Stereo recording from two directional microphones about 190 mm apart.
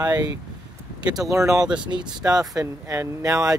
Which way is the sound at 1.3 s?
15° right (ahead or behind).